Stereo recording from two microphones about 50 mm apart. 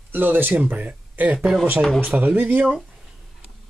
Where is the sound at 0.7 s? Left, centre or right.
Right.